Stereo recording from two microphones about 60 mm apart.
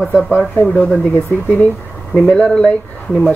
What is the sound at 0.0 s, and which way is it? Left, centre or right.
Speech, centre.